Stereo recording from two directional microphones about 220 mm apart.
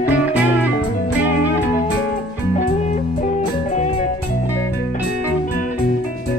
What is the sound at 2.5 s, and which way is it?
Music, 35° left (ahead or behind).